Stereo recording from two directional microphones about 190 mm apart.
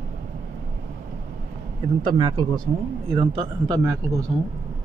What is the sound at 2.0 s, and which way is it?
A man's voice, 25° right (ahead or behind).